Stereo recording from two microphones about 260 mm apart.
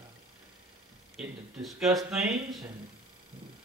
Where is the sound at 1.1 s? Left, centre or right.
Centre.